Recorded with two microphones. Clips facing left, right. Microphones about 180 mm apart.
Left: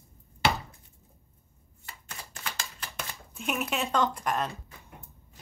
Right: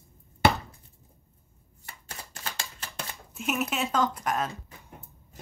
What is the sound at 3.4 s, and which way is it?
Speech, centre (ahead or behind).